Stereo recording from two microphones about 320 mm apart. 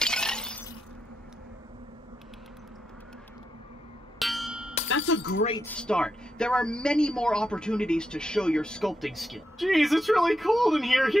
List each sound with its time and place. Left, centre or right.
0.0 s shatter: centre
4.2 s a sound: centre
4.8 s music: left
5.6 s speech: centre